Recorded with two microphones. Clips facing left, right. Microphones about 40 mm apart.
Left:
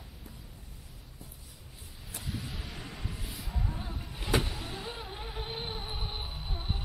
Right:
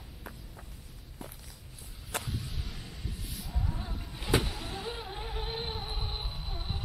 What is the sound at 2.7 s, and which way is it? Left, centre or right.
Vehicle, left.